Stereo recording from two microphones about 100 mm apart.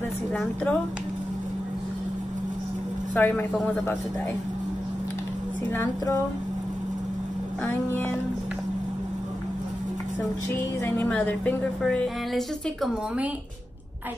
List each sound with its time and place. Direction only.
0.3 s a woman's voice: 15° left (ahead or behind)
3.2 s a woman's voice: 20° left (ahead or behind)
5.7 s music: 25° left (ahead or behind)
7.6 s music: 20° left (ahead or behind)
10.8 s a woman's voice: 15° left (ahead or behind)